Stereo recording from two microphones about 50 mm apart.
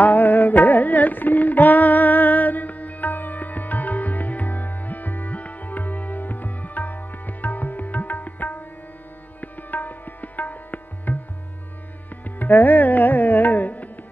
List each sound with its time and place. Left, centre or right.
0.0 s music: left
12.4 s music: left